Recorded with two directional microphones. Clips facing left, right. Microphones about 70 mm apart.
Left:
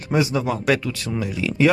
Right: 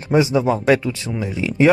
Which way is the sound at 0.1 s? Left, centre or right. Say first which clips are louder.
Right 5 dB; right.